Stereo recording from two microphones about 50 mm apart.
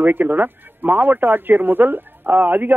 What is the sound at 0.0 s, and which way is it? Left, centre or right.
Speech, right.